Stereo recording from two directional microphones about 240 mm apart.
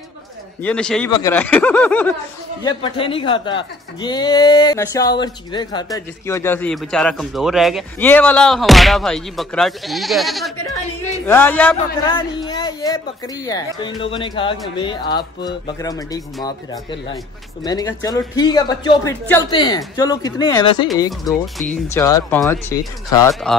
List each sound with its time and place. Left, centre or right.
0.6 s speech: centre
2.6 s a man's voice: left
12.1 s a sound: centre
13.5 s speech: centre
21.2 s a man's voice: centre
21.9 s speech: centre